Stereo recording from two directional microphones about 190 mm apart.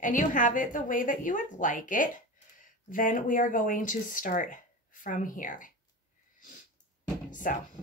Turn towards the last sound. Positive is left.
turn(degrees=45)  # may be behind; listen again after turning